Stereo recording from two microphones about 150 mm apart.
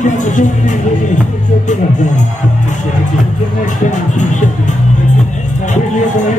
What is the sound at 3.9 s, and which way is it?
Music, 55° left (ahead or behind).